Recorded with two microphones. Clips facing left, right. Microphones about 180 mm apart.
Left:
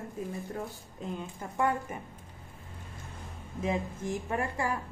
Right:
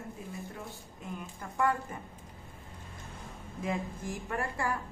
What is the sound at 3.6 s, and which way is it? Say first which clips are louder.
A woman's voice: left 3 dB; 20° left (ahead or behind).